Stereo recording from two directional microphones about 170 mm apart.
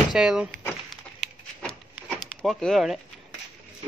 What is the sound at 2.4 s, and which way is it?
Speech, 5° left (ahead or behind).